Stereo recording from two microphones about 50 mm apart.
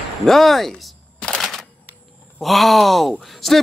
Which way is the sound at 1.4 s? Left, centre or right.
Centre.